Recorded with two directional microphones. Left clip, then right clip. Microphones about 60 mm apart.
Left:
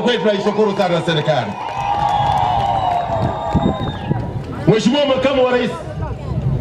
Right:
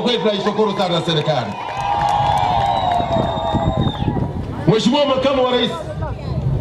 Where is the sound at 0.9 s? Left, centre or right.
Right.